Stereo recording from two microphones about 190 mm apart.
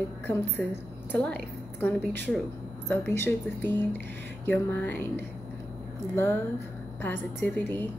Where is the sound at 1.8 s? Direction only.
10° left (ahead or behind).